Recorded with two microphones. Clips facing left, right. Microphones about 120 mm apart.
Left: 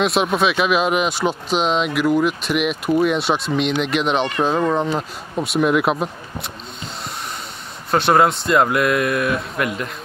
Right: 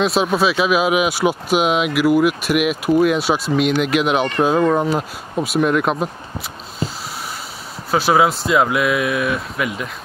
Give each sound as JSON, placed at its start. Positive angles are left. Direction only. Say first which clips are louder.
{"t": 0.0, "sound": "speech", "louder": "right 1 dB", "side_deg": 0}
{"t": 7.9, "sound": "speech", "louder": "even", "side_deg": 0}